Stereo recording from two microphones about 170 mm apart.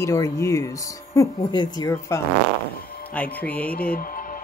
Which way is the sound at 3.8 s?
60° left (ahead or behind).